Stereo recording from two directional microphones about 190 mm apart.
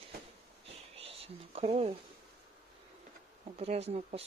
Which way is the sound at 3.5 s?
35° right (ahead or behind).